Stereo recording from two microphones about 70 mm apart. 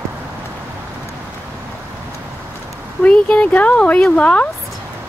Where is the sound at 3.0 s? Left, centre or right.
Centre.